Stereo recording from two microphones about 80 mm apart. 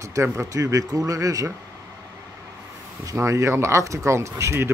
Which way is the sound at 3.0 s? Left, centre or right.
Right.